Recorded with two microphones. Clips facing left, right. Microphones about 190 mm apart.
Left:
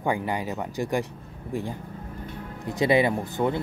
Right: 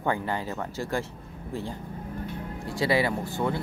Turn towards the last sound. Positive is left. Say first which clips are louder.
# left 3 dB
turn(degrees=20)  # may be behind; listen again after turning